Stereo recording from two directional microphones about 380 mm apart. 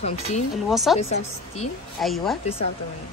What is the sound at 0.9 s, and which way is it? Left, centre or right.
Speech, centre.